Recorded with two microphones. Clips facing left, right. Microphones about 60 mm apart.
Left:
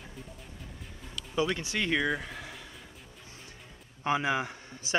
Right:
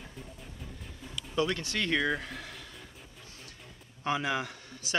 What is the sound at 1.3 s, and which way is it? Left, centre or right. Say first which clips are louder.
Speech: left 1 dB; centre.